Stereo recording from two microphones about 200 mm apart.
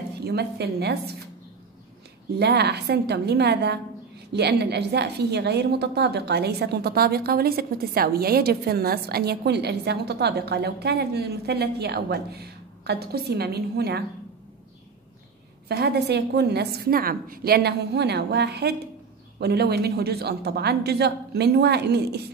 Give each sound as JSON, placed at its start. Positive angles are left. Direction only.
{"t": 0.2, "sound": "a woman's voice", "side_deg": -55}
{"t": 2.3, "sound": "a woman's voice", "side_deg": -55}
{"t": 15.7, "sound": "a woman's voice", "side_deg": -55}